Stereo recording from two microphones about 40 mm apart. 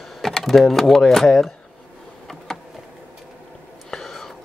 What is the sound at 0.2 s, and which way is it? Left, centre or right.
Speech, centre.